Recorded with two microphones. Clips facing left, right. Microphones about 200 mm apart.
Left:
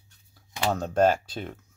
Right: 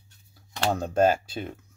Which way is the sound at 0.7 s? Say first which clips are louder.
Even; 10° right (ahead or behind).